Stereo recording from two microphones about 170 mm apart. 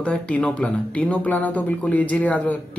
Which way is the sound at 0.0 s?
5° left (ahead or behind).